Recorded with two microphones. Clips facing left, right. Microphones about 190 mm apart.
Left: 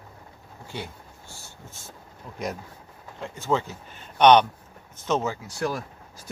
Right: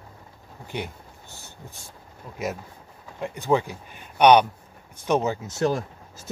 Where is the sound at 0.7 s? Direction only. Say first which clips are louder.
Right 4 dB; 20° right (ahead or behind).